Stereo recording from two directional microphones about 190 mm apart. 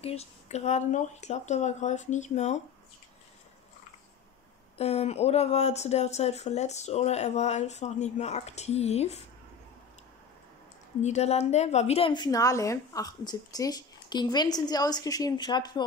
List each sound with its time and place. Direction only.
0.0 s speech: 35° left (ahead or behind)
4.7 s speech: 35° left (ahead or behind)
11.0 s a woman's voice: 35° left (ahead or behind)